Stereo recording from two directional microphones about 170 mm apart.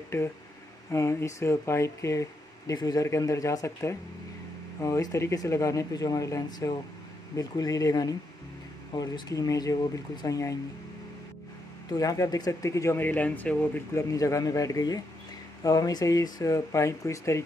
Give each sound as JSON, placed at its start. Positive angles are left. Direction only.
{"t": 0.9, "sound": "speech", "side_deg": 15}
{"t": 11.9, "sound": "speech", "side_deg": 20}